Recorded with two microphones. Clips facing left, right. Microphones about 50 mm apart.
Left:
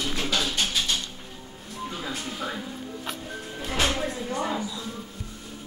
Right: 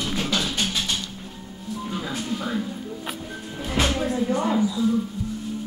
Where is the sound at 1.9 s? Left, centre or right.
Centre.